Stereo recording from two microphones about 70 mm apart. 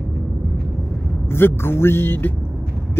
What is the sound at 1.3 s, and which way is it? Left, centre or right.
Speech, left.